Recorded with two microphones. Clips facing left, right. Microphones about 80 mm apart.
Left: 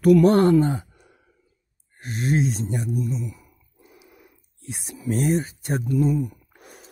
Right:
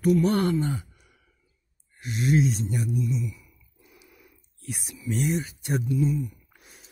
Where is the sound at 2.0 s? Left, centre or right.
Left.